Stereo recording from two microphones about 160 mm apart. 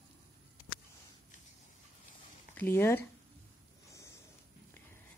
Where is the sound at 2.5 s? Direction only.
15° left (ahead or behind).